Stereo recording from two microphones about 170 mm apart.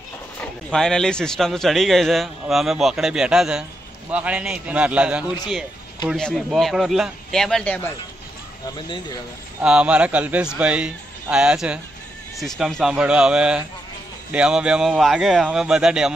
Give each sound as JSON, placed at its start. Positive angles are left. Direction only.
{"t": 0.4, "sound": "speech", "side_deg": 5}
{"t": 8.7, "sound": "speech", "side_deg": 25}
{"t": 9.6, "sound": "speech", "side_deg": -5}